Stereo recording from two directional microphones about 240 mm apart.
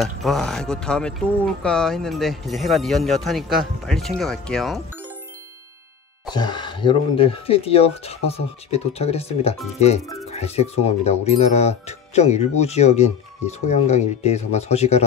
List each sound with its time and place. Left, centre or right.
0.0 s speech: centre
6.2 s speech: centre